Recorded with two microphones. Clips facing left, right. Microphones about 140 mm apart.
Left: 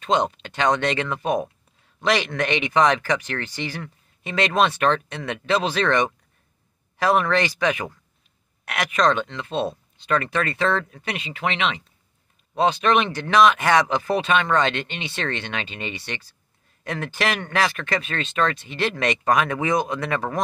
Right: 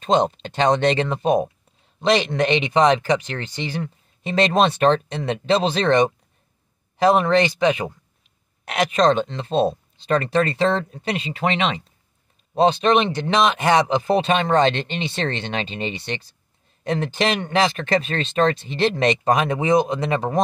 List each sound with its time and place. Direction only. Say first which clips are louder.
0.0 s speech: right 3 dB; 30° right (ahead or behind)